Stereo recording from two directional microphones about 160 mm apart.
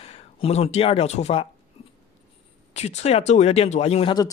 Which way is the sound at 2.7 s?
45° left (ahead or behind).